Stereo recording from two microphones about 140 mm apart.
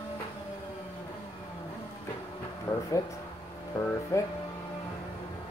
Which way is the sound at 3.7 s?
20° left (ahead or behind).